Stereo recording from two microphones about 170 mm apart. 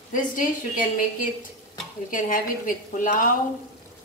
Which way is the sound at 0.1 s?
50° left (ahead or behind).